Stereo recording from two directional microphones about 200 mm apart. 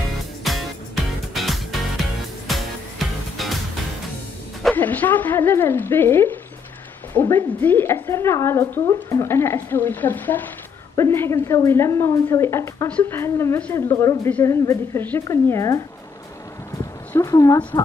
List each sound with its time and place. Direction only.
0.4 s music: centre (ahead or behind)
4.6 s a woman's voice: 10° left (ahead or behind)
17.2 s speech: 15° left (ahead or behind)